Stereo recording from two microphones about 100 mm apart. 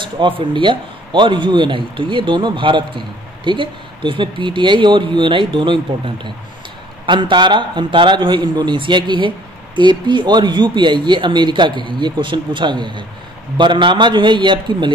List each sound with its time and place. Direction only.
0.0 s a man's voice: 55° right (ahead or behind)